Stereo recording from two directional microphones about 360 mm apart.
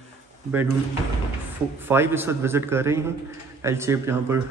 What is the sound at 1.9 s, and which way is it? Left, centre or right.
A man's voice, centre.